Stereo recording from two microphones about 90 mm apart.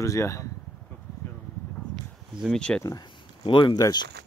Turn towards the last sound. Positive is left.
turn(degrees=50)  # may be behind; listen again after turning